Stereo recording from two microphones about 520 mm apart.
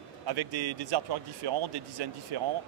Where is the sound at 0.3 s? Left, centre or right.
Right.